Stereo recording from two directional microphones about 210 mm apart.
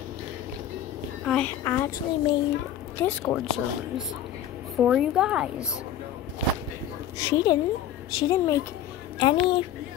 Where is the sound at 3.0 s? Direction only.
5° left (ahead or behind).